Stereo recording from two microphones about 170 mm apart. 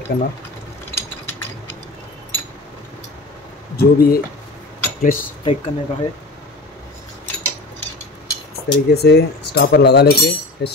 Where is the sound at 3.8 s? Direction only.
60° left (ahead or behind).